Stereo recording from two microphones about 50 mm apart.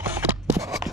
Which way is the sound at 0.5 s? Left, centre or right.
Right.